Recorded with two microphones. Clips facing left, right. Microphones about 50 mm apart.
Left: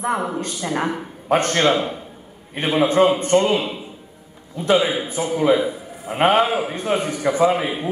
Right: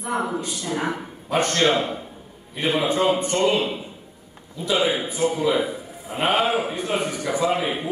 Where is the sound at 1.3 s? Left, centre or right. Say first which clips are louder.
Left 3 dB; left.